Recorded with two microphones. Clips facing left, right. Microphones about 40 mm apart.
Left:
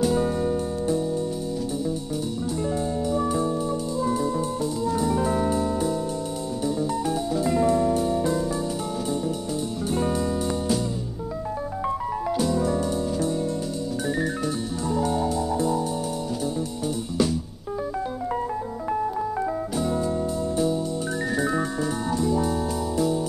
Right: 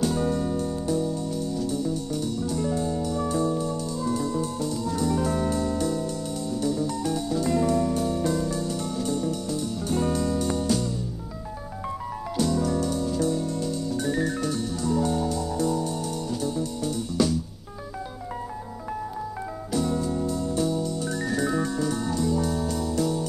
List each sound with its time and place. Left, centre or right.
0.0 s music: centre
3.2 s music: centre
11.8 s music: centre
14.0 s music: centre
18.9 s music: centre